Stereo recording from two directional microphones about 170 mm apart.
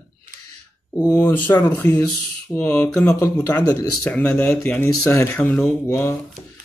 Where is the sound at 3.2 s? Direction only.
20° left (ahead or behind).